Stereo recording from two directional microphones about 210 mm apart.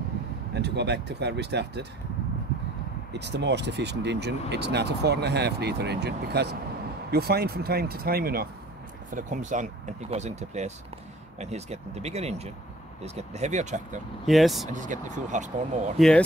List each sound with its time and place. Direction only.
0.6 s speech: 55° right (ahead or behind)
3.1 s speech: 55° right (ahead or behind); by 14.0 s 35° right (ahead or behind)
14.2 s speech: centre (ahead or behind)
14.7 s speech: 35° right (ahead or behind)